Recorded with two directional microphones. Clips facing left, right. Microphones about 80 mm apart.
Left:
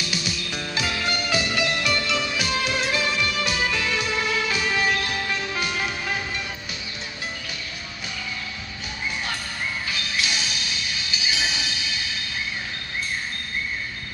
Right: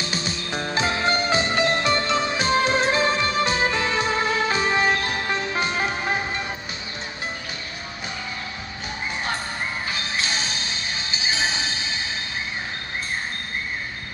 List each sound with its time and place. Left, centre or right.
0.0 s music: right
9.8 s music: right